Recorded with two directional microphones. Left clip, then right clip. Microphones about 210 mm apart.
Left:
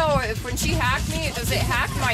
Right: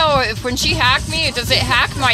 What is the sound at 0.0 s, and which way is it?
Speech, 30° right (ahead or behind).